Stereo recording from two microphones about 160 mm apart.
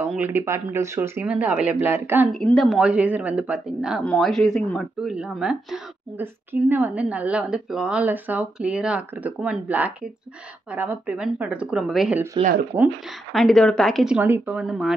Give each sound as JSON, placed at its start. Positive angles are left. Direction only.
{"t": 0.0, "sound": "a woman's voice", "side_deg": -10}
{"t": 2.3, "sound": "a woman's voice", "side_deg": 0}
{"t": 13.3, "sound": "speech", "side_deg": 0}
{"t": 14.1, "sound": "a woman's voice", "side_deg": -10}